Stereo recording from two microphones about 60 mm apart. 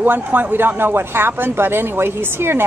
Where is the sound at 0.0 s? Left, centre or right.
Right.